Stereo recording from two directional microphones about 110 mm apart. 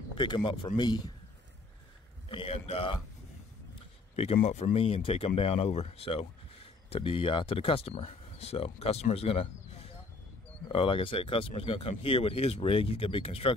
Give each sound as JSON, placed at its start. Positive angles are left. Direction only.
{"t": 0.1, "sound": "speech", "side_deg": 45}
{"t": 2.2, "sound": "speech", "side_deg": 60}
{"t": 4.2, "sound": "speech", "side_deg": 70}